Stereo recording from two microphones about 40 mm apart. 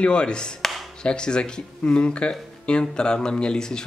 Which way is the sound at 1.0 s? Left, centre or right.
Left.